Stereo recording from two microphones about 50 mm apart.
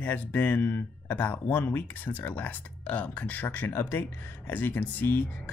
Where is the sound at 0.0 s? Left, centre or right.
Left.